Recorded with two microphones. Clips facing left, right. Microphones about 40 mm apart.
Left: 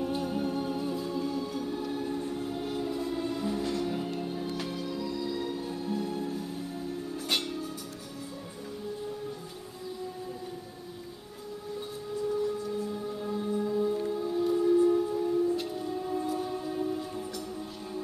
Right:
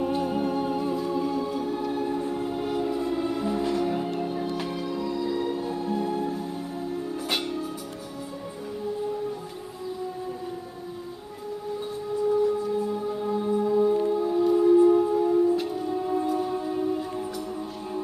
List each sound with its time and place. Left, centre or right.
0.0 s music: centre
7.2 s music: centre
12.7 s music: centre
15.5 s music: centre